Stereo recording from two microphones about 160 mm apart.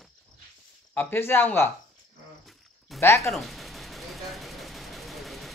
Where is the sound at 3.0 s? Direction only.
15° left (ahead or behind).